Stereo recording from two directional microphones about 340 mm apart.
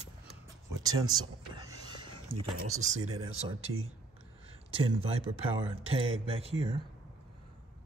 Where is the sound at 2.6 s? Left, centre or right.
Right.